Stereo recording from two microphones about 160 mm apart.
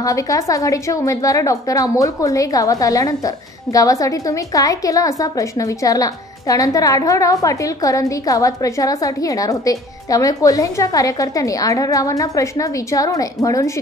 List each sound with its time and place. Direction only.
0.0 s a woman's voice: 20° left (ahead or behind)